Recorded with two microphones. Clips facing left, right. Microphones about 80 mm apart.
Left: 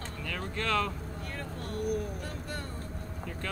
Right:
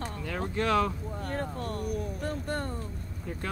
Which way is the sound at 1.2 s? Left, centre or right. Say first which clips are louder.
Right 8 dB; right.